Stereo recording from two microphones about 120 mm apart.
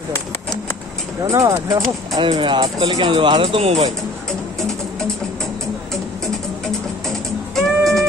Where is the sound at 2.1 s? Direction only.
40° right (ahead or behind); by 3.9 s 60° right (ahead or behind).